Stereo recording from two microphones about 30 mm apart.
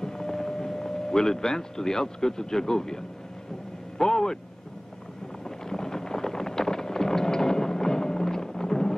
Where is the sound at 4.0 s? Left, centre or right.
Centre.